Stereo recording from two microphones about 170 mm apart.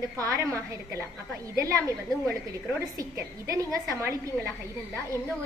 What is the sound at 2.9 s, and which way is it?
A woman's voice, 20° right (ahead or behind).